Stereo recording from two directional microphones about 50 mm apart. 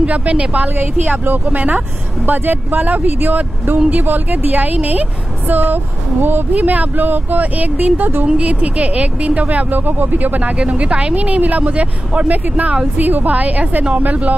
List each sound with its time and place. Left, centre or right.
0.0 s speech: right
8.3 s speech: right
10.6 s speech: right